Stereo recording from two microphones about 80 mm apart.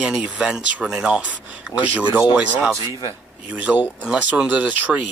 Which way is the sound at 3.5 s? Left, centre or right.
Centre.